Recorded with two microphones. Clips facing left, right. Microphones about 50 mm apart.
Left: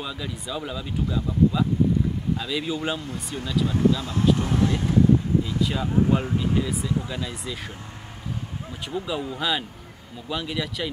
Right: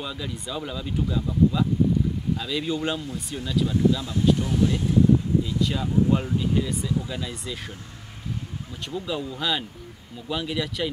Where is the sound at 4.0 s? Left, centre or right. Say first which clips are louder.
Even; left.